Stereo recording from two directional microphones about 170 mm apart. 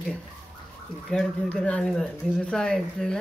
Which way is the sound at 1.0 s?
5° left (ahead or behind).